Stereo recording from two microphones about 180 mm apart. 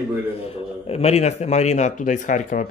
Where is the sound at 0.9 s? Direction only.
35° left (ahead or behind).